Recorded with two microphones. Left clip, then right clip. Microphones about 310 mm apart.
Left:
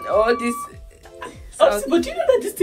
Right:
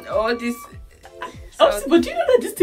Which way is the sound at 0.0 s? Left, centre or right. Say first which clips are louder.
Left 4 dB; centre.